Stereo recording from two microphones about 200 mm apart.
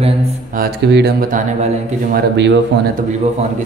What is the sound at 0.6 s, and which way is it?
Speech, 55° right (ahead or behind).